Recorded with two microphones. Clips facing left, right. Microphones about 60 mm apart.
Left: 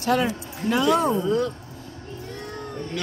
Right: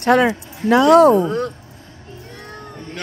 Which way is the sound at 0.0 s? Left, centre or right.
Right.